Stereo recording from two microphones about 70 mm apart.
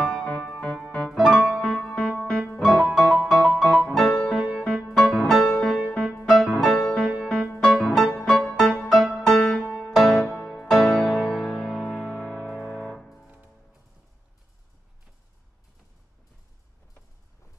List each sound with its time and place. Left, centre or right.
0.0 s music: centre
1.1 s music: centre
1.7 s music: centre
2.6 s music: centre
9.2 s music: centre
12.9 s music: centre